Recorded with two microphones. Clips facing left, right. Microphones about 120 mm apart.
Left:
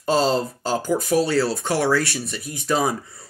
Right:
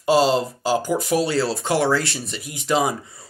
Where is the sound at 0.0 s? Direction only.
10° right (ahead or behind).